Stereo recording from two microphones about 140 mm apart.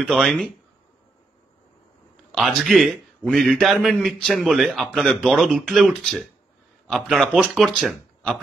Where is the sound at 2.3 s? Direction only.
Centre (ahead or behind).